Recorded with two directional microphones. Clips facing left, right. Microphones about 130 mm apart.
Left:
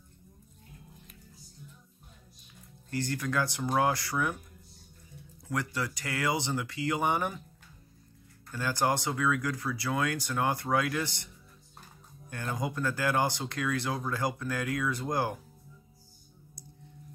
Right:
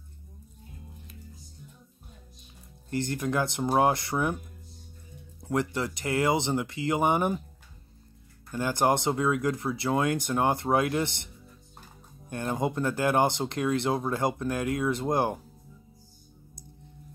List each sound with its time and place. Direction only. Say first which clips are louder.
2.9 s speech: right 3 dB; 20° right (ahead or behind)
5.4 s speech: right 5 dB; 25° right (ahead or behind)
8.5 s speech: right 4 dB; 20° right (ahead or behind)
12.3 s speech: right 6 dB; 25° right (ahead or behind)